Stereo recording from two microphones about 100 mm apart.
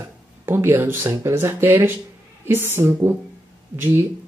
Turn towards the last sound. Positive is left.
turn(degrees=-25)  # may be behind; listen again after turning